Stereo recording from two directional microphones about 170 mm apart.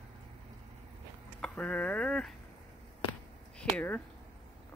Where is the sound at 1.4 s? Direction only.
10° left (ahead or behind).